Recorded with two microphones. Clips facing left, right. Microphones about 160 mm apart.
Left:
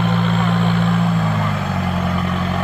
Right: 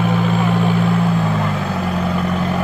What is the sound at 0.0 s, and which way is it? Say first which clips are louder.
Vehicle: right 1 dB; 5° right (ahead or behind).